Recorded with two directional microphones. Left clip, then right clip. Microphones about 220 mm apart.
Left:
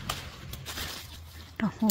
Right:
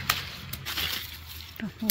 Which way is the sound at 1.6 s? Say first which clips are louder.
Left 7 dB; 20° left (ahead or behind).